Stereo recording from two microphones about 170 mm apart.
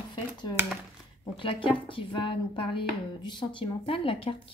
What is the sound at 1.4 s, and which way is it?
A woman's voice, 30° left (ahead or behind).